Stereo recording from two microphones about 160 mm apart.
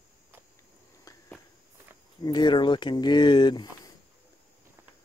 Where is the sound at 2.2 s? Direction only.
30° left (ahead or behind).